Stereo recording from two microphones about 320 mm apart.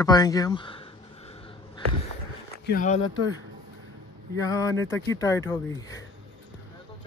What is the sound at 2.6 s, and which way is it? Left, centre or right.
Speech, left.